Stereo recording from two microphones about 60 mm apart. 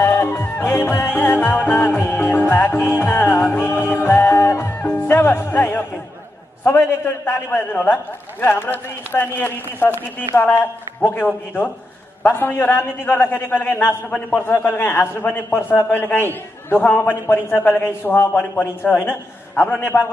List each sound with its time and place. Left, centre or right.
0.0 s music: left
12.2 s a man's voice: left
12.5 s music: left
19.5 s a man's voice: left
19.8 s music: left